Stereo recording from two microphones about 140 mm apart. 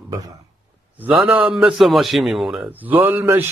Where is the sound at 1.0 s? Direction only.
10° right (ahead or behind).